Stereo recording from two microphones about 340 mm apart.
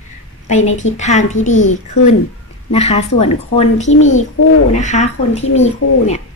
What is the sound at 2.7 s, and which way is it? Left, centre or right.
Speech, centre.